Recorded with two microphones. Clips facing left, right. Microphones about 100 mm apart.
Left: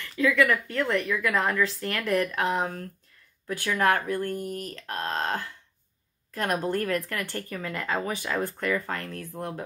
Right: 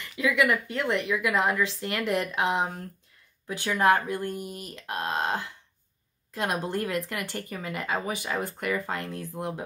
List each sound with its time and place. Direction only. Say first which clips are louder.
0.2 s speech: left 2 dB; 15° right (ahead or behind)